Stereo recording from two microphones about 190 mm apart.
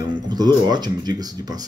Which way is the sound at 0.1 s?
20° right (ahead or behind).